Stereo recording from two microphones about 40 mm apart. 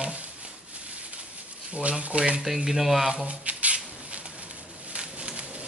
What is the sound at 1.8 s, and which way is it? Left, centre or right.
Speech, right.